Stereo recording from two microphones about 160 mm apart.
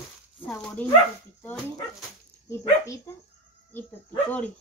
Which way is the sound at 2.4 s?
20° left (ahead or behind).